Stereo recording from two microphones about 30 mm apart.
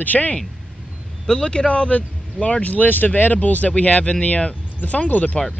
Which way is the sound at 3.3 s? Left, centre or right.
Left.